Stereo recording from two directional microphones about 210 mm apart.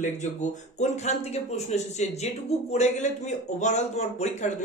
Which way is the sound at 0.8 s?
30° left (ahead or behind).